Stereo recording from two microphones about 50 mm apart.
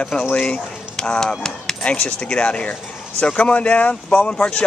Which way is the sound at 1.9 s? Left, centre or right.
Left.